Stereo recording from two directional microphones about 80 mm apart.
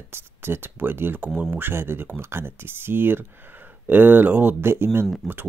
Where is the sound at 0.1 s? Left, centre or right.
Right.